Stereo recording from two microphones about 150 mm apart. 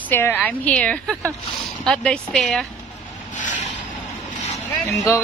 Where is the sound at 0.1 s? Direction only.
15° left (ahead or behind).